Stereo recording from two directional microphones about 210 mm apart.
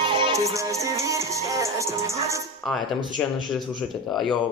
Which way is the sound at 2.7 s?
Centre (ahead or behind).